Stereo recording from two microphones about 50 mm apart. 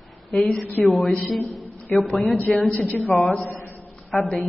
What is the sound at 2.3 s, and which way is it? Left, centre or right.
Speech, left.